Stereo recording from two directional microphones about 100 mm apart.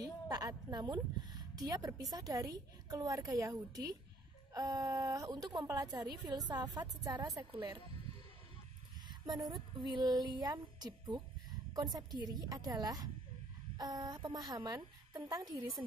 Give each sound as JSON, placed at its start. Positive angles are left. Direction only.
{"t": 0.0, "sound": "a woman's voice", "side_deg": -40}
{"t": 5.3, "sound": "a woman's voice", "side_deg": -50}
{"t": 5.7, "sound": "a woman's voice", "side_deg": -35}
{"t": 9.5, "sound": "a woman's voice", "side_deg": -50}